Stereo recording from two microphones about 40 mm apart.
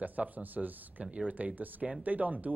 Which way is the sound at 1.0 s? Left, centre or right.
Right.